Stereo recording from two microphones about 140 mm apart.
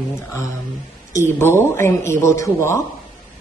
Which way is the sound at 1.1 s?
15° left (ahead or behind).